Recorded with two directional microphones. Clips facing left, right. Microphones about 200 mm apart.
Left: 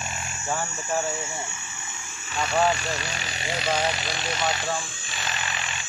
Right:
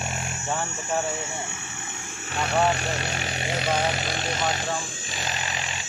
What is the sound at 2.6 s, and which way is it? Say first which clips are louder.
Speech: even; 60° right (ahead or behind).